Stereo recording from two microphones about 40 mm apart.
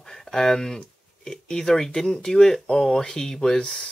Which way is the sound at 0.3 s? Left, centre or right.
Centre.